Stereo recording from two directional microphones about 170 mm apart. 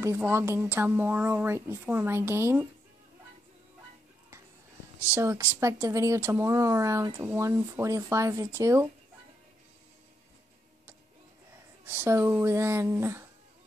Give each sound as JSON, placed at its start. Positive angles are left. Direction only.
{"t": 0.0, "sound": "speech", "side_deg": -15}
{"t": 5.1, "sound": "speech", "side_deg": -15}
{"t": 11.8, "sound": "speech", "side_deg": -15}